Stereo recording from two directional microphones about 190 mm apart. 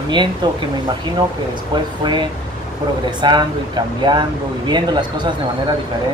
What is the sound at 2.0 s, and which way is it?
Speech, 25° right (ahead or behind).